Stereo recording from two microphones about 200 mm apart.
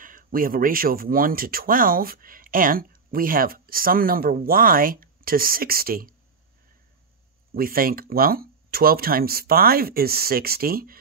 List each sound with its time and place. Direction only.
0.0 s speech: 45° right (ahead or behind)
7.5 s speech: 45° right (ahead or behind)